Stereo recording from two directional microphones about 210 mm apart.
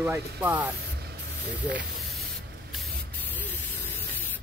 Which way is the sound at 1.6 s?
55° right (ahead or behind).